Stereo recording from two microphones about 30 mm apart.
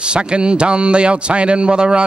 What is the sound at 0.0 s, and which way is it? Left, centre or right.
A man's voice, right.